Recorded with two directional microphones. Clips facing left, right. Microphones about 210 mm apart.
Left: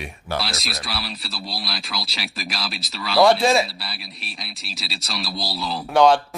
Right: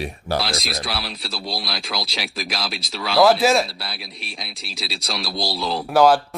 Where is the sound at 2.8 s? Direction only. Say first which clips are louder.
Even; centre (ahead or behind).